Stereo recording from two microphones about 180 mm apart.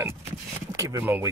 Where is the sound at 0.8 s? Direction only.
15° right (ahead or behind).